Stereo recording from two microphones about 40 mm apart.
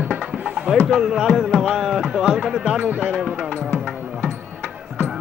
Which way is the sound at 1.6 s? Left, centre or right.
Centre.